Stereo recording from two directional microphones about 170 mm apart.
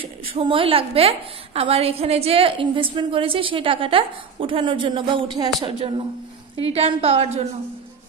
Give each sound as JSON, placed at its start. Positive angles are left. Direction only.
{"t": 0.0, "sound": "a woman's voice", "side_deg": -35}